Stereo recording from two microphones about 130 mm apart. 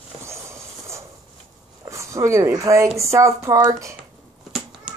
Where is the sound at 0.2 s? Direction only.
20° right (ahead or behind).